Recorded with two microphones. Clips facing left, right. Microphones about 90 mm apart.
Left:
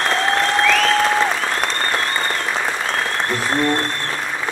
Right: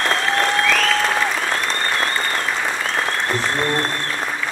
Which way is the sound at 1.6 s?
55° left (ahead or behind).